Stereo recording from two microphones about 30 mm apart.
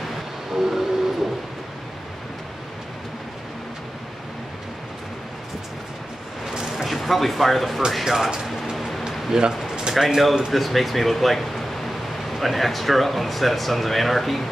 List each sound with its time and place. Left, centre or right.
0.5 s train: centre
6.5 s a sound: centre
6.8 s speech: centre
9.3 s speech: right
9.9 s speech: centre